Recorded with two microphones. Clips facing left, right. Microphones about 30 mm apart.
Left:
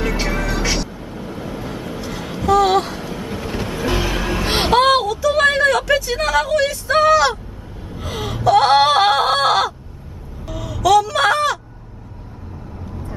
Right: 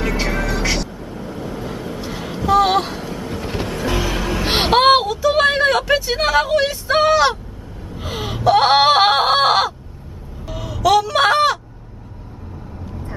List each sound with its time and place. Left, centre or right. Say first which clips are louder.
0.0 s music: even; centre
0.9 s vehicle: even; centre
2.0 s vehicle: even; centre
2.5 s a sound: even; centre
3.0 s vehicle: even; centre
3.4 s music: left 1 dB; centre
4.5 s a sound: right 2 dB; centre